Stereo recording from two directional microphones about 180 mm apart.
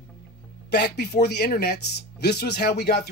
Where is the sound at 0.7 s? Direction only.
65° left (ahead or behind).